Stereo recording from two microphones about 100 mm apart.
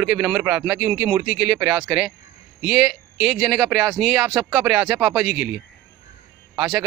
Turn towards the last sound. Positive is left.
turn(degrees=-15)  # may be behind; listen again after turning